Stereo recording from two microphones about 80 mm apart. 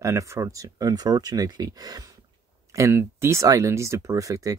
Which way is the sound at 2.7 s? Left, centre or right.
Right.